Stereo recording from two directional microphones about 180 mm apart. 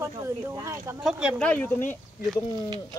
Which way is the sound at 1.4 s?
5° left (ahead or behind).